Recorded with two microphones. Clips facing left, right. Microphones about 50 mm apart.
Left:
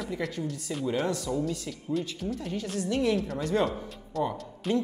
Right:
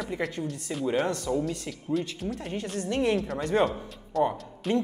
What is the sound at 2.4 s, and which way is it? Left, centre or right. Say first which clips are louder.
Speech: even; right.